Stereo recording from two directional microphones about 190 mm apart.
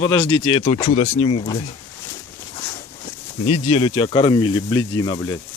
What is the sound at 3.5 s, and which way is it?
Speech, 30° left (ahead or behind).